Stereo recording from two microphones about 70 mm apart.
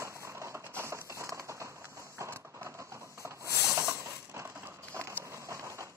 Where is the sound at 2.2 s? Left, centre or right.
Right.